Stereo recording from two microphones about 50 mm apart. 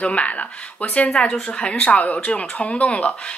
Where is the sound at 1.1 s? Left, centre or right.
Centre.